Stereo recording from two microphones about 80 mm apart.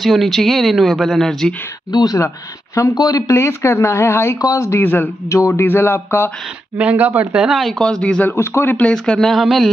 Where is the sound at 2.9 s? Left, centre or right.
Left.